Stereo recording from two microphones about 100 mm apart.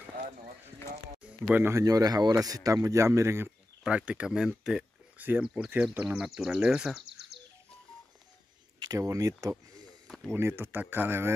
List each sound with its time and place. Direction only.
1.5 s speech: 25° right (ahead or behind)
1.9 s speech: 40° right (ahead or behind)
3.8 s speech: 10° right (ahead or behind)
5.7 s speech: 20° right (ahead or behind)
6.0 s speech: 5° right (ahead or behind)
8.7 s speech: 40° right (ahead or behind)
10.0 s a sound: 5° left (ahead or behind)
10.3 s speech: 25° right (ahead or behind)